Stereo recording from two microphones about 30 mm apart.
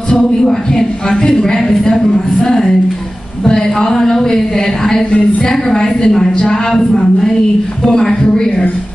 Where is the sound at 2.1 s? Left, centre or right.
Left.